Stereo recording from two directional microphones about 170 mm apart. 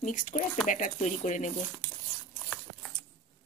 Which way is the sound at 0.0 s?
50° left (ahead or behind).